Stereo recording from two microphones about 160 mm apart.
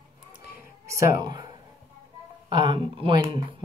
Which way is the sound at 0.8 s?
20° right (ahead or behind).